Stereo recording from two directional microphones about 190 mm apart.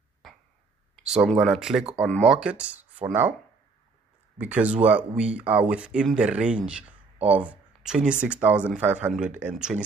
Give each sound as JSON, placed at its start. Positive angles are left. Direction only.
{"t": 0.2, "sound": "throat clearing", "side_deg": 0}
{"t": 0.9, "sound": "a sound", "side_deg": -5}
{"t": 1.4, "sound": "speech", "side_deg": 0}
{"t": 4.4, "sound": "speech", "side_deg": -5}